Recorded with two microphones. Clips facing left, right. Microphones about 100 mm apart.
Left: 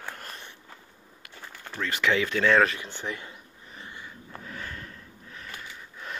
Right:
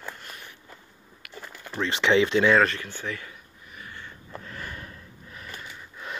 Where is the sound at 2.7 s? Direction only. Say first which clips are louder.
Right 1 dB; 20° left (ahead or behind).